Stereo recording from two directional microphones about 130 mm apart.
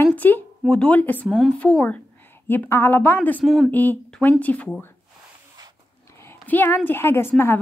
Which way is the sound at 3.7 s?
15° left (ahead or behind).